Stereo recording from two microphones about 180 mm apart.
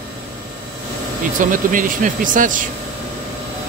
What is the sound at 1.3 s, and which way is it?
Speech, 45° right (ahead or behind).